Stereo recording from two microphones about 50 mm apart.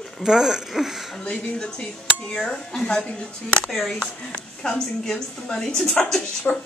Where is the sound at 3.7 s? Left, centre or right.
Centre.